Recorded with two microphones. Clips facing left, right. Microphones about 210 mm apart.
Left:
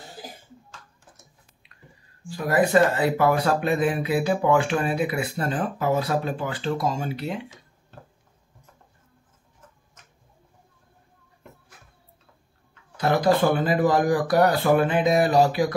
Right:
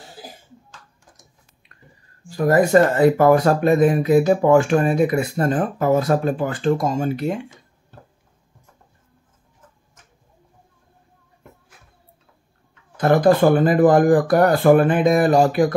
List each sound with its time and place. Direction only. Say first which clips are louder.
2.2 s speech: right 5 dB; 45° right (ahead or behind)
12.9 s speech: right 5 dB; 50° right (ahead or behind)